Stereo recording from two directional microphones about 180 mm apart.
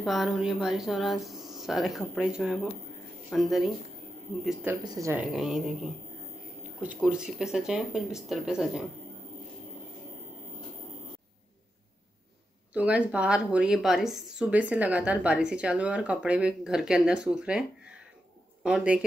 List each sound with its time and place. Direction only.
0.0 s a woman's voice: centre (ahead or behind)
4.8 s speech: 15° right (ahead or behind)
5.2 s a woman's voice: 5° right (ahead or behind)
12.7 s a woman's voice: 5° right (ahead or behind)